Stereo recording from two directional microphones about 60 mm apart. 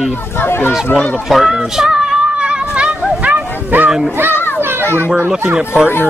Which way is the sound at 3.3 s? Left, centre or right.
Right.